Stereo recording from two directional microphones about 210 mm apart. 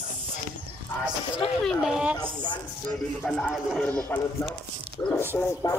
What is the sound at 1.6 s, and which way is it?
Speech, centre (ahead or behind).